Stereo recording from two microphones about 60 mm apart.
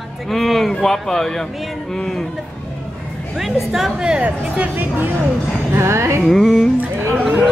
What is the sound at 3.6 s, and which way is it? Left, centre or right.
Speech, centre.